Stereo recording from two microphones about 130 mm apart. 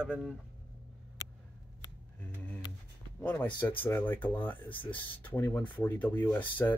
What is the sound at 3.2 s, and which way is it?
Speech, 10° left (ahead or behind).